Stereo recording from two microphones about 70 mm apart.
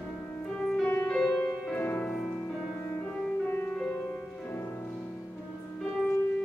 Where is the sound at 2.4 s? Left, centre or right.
Left.